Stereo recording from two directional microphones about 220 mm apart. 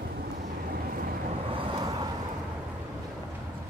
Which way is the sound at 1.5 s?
20° right (ahead or behind).